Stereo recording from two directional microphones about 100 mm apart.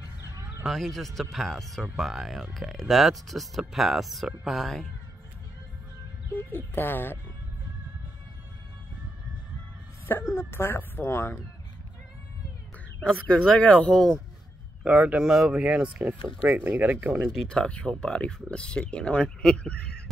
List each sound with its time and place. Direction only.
0.7 s speech: centre (ahead or behind)
6.3 s speech: 20° left (ahead or behind)
10.3 s speech: 25° left (ahead or behind)
13.0 s speech: 5° left (ahead or behind)
14.8 s speech: 10° right (ahead or behind)
17.3 s speech: 5° left (ahead or behind)